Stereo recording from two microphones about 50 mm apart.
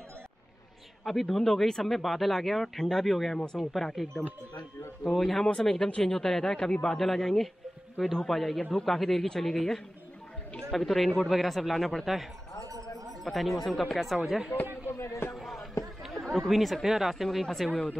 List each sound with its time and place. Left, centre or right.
1.0 s speech: centre
5.9 s speech: centre
6.1 s speech: centre
12.6 s a sound: right
13.2 s speech: centre
14.9 s a sound: left
15.3 s music: centre
16.1 s speech: centre